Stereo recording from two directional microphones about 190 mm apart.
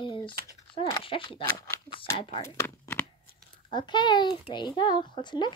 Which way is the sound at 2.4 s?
15° left (ahead or behind).